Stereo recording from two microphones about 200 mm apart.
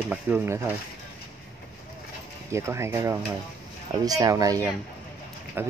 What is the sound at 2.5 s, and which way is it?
Speech, 15° right (ahead or behind).